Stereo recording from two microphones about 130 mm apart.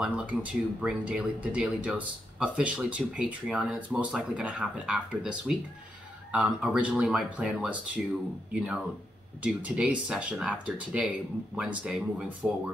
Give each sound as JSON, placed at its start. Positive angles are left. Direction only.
{"t": 0.0, "sound": "speech", "side_deg": -10}
{"t": 9.4, "sound": "speech", "side_deg": -10}